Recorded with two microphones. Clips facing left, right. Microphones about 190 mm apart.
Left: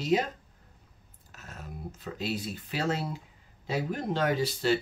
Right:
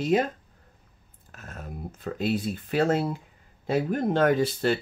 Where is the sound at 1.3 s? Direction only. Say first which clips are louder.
Right 4 dB; 55° right (ahead or behind).